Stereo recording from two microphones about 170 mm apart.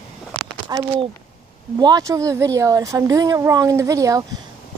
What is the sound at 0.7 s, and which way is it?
Speech, 25° right (ahead or behind).